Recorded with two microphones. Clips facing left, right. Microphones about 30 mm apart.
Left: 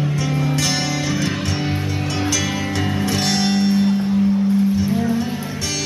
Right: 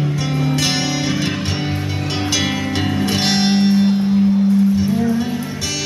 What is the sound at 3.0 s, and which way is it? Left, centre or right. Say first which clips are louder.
Music: right 3 dB; right.